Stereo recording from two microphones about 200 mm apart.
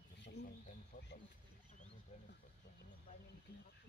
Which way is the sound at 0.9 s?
45° left (ahead or behind).